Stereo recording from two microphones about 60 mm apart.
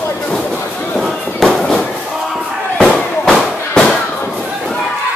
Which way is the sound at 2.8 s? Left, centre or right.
Centre.